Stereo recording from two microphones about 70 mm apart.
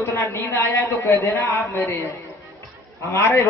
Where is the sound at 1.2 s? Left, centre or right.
Left.